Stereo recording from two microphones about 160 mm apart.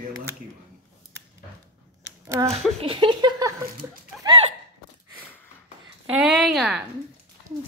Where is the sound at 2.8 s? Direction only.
30° right (ahead or behind).